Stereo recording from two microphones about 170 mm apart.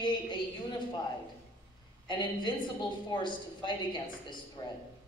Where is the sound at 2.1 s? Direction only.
30° left (ahead or behind).